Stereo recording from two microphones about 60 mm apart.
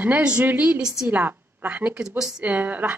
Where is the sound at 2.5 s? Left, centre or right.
Right.